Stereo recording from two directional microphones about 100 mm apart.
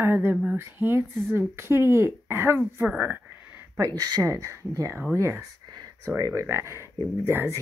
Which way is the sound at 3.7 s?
35° right (ahead or behind).